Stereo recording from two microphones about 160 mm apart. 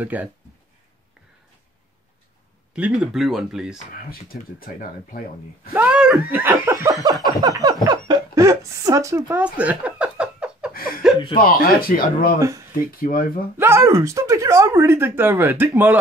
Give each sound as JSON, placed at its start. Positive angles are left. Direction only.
{"t": 0.0, "sound": "speech", "side_deg": -10}
{"t": 2.7, "sound": "speech", "side_deg": -5}
{"t": 3.9, "sound": "speech", "side_deg": 65}
{"t": 5.7, "sound": "a sound", "side_deg": -10}
{"t": 7.9, "sound": "speech", "side_deg": -25}
{"t": 9.4, "sound": "a sound", "side_deg": -10}
{"t": 10.7, "sound": "chuckle", "side_deg": 65}
{"t": 11.3, "sound": "speech", "side_deg": 65}
{"t": 12.4, "sound": "a sound", "side_deg": -20}
{"t": 12.7, "sound": "speech", "side_deg": 65}
{"t": 13.6, "sound": "speech", "side_deg": -15}